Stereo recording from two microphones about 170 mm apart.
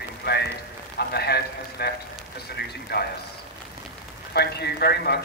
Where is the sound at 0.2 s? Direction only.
75° left (ahead or behind).